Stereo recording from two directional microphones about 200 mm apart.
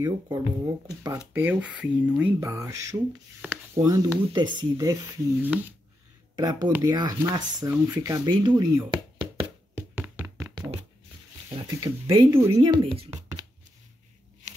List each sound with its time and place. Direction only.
0.0 s speech: 15° right (ahead or behind)
5.4 s speech: 10° right (ahead or behind)
6.3 s speech: 20° right (ahead or behind)
9.8 s music: 10° right (ahead or behind)
11.8 s speech: 25° right (ahead or behind)
13.1 s whispering: 15° right (ahead or behind)